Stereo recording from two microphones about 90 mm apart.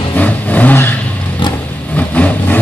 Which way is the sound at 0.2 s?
20° left (ahead or behind).